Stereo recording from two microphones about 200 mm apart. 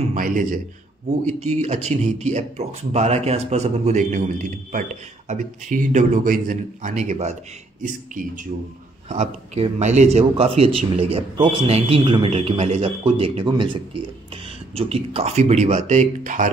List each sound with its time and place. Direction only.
0.0 s a man's voice: 40° right (ahead or behind)